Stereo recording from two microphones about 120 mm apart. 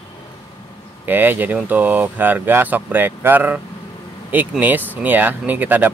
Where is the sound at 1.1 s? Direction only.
15° right (ahead or behind).